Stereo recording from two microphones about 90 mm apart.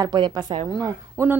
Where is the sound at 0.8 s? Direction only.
40° right (ahead or behind).